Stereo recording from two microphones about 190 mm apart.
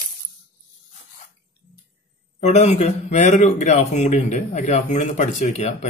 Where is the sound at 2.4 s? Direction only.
35° left (ahead or behind).